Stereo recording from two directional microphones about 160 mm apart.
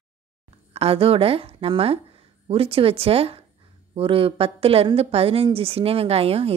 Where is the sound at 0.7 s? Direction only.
35° right (ahead or behind).